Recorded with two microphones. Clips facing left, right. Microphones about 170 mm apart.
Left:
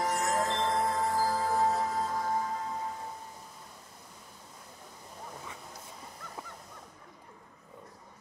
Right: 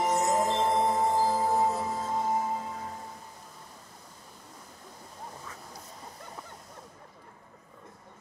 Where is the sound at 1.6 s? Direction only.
Centre (ahead or behind).